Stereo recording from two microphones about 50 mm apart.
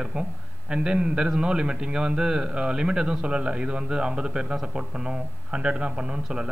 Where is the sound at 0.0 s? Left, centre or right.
Centre.